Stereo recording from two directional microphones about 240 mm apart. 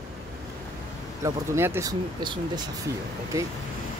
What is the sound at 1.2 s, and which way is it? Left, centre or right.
Speech, centre.